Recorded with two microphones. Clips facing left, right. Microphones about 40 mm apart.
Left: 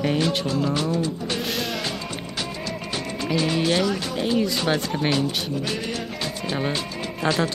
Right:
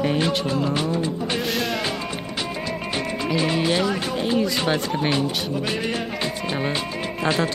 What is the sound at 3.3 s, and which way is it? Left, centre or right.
Speech, centre.